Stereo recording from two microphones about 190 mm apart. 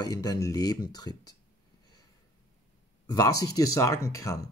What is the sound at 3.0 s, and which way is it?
Speech, 20° left (ahead or behind).